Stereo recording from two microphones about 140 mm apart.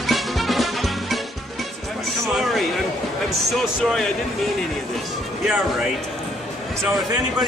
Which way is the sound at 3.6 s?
Centre (ahead or behind).